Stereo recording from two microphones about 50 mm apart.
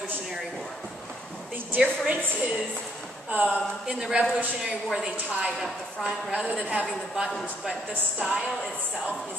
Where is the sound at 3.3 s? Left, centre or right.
Right.